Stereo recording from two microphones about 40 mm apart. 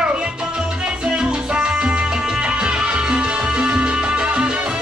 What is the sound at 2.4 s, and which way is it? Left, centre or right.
Salsa music, right.